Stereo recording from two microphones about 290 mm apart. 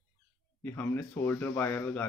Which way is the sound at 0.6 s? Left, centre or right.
Centre.